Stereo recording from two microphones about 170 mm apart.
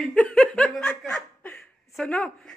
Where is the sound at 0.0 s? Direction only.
5° left (ahead or behind).